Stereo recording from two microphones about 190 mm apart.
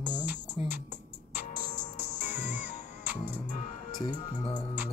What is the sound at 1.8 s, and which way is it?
Music, 40° left (ahead or behind).